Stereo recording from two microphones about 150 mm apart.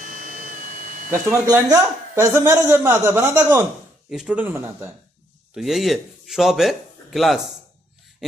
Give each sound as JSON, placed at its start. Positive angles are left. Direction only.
{"t": 0.0, "sound": "a sound", "side_deg": -60}
{"t": 1.1, "sound": "a man's voice", "side_deg": -20}
{"t": 4.1, "sound": "speech", "side_deg": -5}
{"t": 5.5, "sound": "speech", "side_deg": 0}
{"t": 8.2, "sound": "filing", "side_deg": 0}